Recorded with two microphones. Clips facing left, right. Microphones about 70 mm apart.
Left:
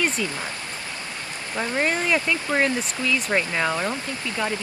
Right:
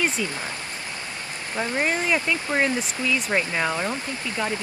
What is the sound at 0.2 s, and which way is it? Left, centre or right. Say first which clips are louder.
Speech: left 1 dB; centre.